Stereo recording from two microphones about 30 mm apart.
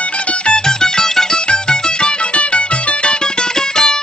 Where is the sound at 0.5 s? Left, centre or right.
Left.